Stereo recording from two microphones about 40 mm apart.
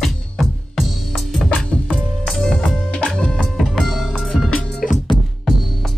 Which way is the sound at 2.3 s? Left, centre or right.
Centre.